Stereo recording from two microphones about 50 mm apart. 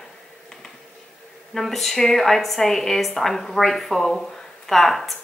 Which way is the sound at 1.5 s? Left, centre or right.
Centre.